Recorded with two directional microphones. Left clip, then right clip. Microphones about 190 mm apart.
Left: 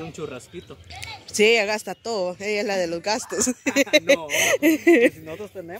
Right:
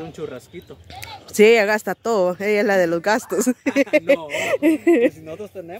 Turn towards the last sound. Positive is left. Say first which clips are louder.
# right 2 dB
turn(degrees=-40)  # may be behind; listen again after turning